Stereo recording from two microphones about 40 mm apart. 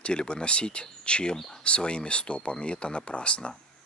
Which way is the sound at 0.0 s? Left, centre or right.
Left.